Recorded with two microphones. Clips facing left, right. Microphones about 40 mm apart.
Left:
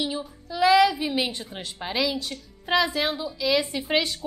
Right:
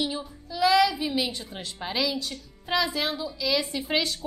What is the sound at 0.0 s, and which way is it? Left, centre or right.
Child singing, centre.